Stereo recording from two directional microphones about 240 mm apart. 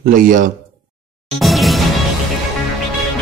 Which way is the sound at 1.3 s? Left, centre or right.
Centre.